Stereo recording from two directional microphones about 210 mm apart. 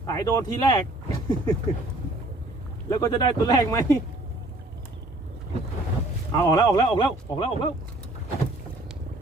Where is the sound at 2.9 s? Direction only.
20° left (ahead or behind).